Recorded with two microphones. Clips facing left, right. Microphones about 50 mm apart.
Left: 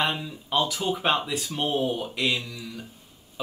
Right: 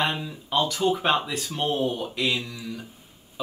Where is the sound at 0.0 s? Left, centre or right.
Centre.